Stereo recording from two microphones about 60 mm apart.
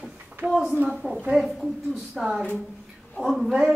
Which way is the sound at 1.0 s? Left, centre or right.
Centre.